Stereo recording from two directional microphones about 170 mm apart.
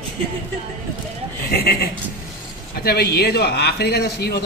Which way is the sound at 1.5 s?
65° left (ahead or behind).